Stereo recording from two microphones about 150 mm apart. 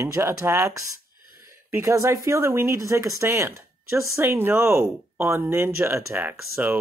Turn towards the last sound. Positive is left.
turn(degrees=-10)  # may be behind; listen again after turning